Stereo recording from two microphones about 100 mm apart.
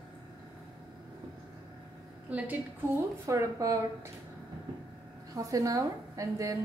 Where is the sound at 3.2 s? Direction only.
30° right (ahead or behind).